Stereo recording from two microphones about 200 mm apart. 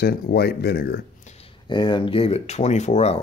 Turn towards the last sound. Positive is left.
turn(degrees=35)  # may be behind; listen again after turning